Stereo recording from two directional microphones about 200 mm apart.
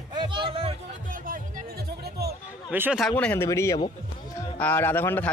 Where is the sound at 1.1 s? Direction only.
45° right (ahead or behind).